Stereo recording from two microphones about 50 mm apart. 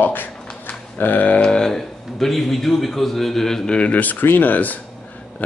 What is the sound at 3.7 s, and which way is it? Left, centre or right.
Speech, left.